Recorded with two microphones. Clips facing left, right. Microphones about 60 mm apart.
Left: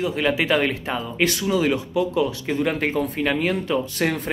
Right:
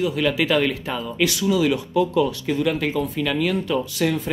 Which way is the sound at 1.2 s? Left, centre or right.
Left.